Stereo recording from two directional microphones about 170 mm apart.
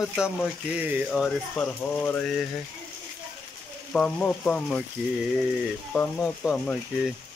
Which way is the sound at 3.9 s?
5° left (ahead or behind).